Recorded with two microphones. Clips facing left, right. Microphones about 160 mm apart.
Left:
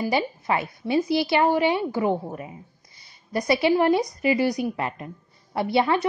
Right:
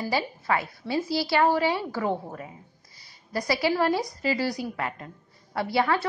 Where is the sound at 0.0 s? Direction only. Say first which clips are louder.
Left 4 dB; 20° left (ahead or behind).